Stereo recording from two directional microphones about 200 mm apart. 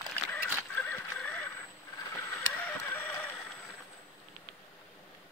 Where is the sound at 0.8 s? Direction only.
10° left (ahead or behind).